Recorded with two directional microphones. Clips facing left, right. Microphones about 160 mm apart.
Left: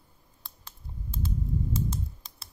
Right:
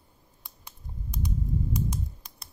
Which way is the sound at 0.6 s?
15° right (ahead or behind).